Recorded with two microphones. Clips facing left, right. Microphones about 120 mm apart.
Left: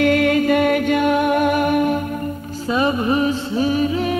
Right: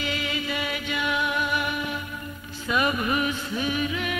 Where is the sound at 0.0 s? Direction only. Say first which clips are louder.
Left 15 dB; 55° left (ahead or behind).